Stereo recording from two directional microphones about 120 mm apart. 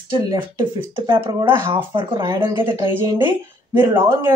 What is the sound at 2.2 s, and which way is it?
Speech, 25° right (ahead or behind).